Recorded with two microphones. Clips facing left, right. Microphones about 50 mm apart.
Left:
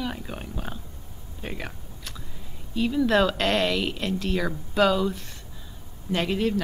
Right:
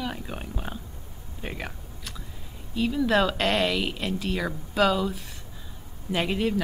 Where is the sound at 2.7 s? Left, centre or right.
Centre.